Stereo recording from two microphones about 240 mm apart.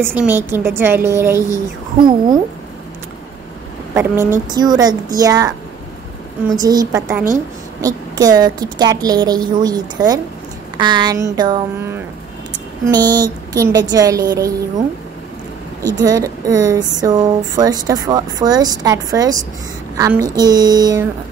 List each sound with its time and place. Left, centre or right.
0.0 s speech: centre
3.9 s speech: centre
6.5 s speech: centre